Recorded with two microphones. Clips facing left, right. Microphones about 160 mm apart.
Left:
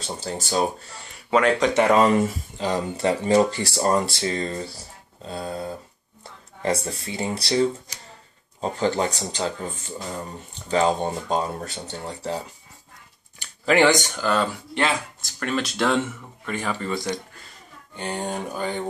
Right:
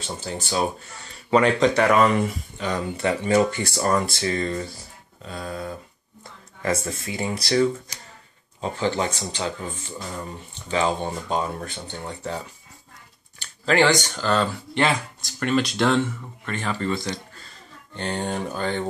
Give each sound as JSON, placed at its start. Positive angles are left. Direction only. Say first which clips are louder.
{"t": 0.0, "sound": "speech", "louder": "left 1 dB", "side_deg": 35}
{"t": 1.3, "sound": "speech", "louder": "right 1 dB", "side_deg": 0}
{"t": 1.7, "sound": "speech", "louder": "left 1 dB", "side_deg": 20}
{"t": 2.0, "sound": "speech", "louder": "left 2 dB", "side_deg": 40}
{"t": 13.4, "sound": "speech", "louder": "left 1 dB", "side_deg": 15}